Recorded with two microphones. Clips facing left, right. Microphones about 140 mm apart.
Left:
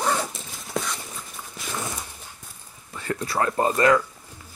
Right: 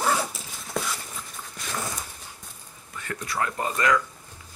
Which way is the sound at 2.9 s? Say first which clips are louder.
Left 5 dB; 30° left (ahead or behind).